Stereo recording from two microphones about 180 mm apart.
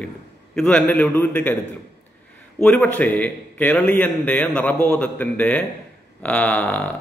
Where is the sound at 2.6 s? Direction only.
5° left (ahead or behind).